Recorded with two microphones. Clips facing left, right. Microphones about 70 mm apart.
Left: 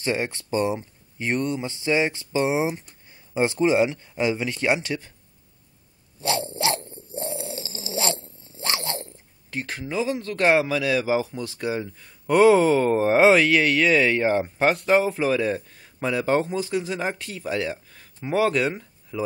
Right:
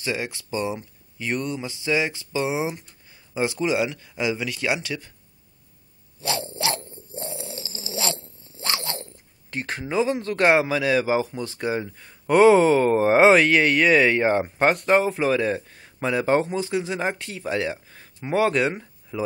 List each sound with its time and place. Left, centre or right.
0.0 s speech: left
6.2 s dog: left
6.9 s zipper: left
9.5 s speech: centre
9.8 s speech: centre